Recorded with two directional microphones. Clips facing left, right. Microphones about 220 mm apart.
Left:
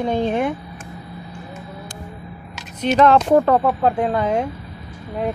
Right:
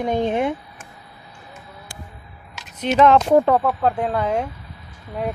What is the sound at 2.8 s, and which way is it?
Speech, 15° right (ahead or behind).